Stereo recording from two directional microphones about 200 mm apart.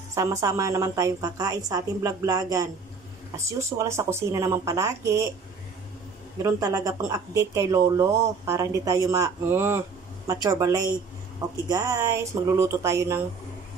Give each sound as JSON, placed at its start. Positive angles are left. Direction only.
{"t": 0.1, "sound": "a woman's voice", "side_deg": -15}
{"t": 6.4, "sound": "a woman's voice", "side_deg": -15}